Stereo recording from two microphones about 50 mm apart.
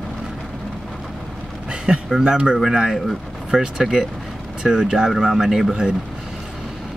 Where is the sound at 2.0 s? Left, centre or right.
Centre.